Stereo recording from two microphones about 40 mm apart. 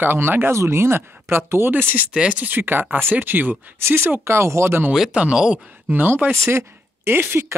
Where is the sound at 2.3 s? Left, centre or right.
Right.